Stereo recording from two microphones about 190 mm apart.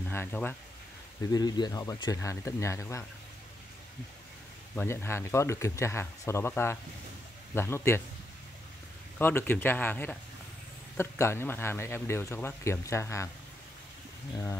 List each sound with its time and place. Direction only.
0.1 s speech: 10° left (ahead or behind)
4.7 s speech: 15° left (ahead or behind)
9.2 s speech: 10° left (ahead or behind)